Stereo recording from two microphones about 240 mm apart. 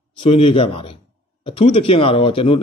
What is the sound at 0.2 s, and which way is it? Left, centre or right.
A man's voice, left.